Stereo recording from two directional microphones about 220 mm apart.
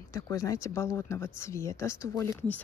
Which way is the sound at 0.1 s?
15° left (ahead or behind).